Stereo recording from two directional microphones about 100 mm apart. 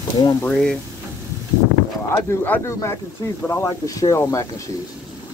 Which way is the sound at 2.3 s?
25° left (ahead or behind).